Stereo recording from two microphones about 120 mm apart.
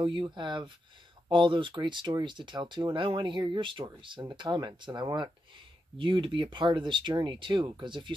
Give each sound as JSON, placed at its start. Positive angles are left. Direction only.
{"t": 0.0, "sound": "speech", "side_deg": -40}